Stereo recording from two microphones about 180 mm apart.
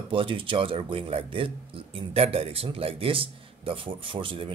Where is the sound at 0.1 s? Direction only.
30° right (ahead or behind).